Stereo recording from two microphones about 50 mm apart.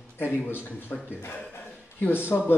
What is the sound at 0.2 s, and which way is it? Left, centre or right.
Speech, left.